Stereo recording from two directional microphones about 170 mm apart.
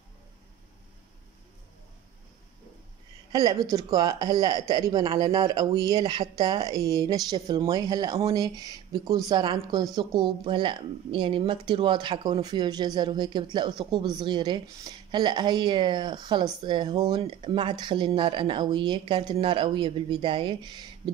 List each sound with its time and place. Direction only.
3.3 s speech: 20° right (ahead or behind)